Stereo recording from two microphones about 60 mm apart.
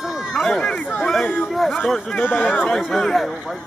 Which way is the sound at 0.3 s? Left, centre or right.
Centre.